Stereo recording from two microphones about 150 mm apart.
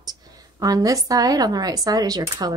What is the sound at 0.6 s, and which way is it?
A woman's voice, 25° right (ahead or behind).